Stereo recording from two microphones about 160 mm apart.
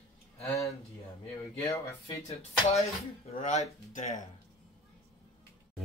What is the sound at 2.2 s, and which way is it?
Speech, 40° left (ahead or behind).